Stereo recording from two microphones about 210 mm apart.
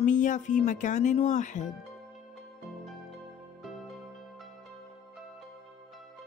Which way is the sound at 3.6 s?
Centre (ahead or behind).